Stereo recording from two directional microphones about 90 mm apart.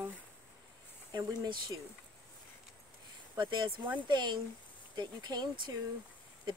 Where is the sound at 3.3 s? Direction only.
60° right (ahead or behind).